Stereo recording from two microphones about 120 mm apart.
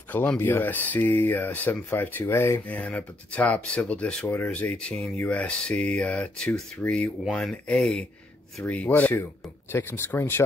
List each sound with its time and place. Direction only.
0.1 s speech: 15° left (ahead or behind)